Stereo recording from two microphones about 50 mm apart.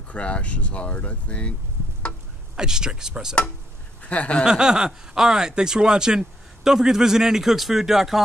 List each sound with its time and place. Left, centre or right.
0.1 s speech: left
2.5 s speech: centre
4.1 s speech: left
4.5 s speech: centre